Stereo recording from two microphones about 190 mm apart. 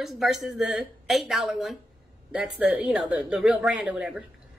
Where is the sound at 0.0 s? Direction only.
Centre (ahead or behind).